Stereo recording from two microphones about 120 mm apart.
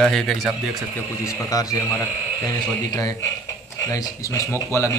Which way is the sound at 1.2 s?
25° left (ahead or behind).